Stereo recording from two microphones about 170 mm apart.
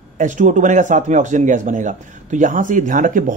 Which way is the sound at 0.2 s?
45° right (ahead or behind).